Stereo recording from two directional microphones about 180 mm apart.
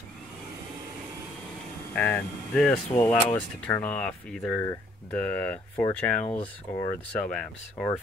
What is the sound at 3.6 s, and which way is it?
Speech, 10° left (ahead or behind).